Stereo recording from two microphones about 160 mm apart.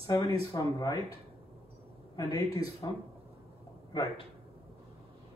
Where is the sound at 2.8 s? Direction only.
25° left (ahead or behind).